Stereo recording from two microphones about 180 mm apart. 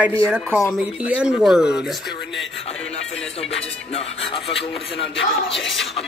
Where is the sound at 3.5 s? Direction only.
35° left (ahead or behind).